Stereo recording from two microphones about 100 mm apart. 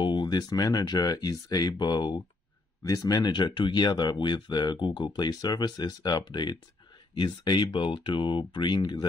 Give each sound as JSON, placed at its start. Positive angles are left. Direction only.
{"t": 0.0, "sound": "speech", "side_deg": 50}